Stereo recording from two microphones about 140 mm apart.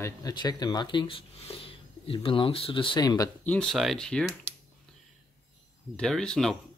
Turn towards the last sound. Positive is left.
turn(degrees=5)  # may be behind; listen again after turning